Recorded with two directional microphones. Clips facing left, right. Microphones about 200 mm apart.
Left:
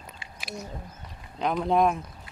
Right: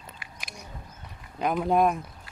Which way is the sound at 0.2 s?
25° left (ahead or behind).